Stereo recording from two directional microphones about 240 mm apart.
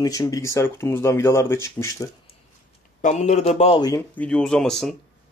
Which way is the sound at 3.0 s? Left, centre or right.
Left.